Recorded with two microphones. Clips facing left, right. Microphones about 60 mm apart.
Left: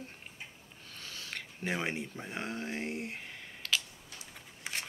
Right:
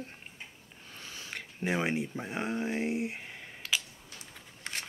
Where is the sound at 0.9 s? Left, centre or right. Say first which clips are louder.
Right 1 dB; centre.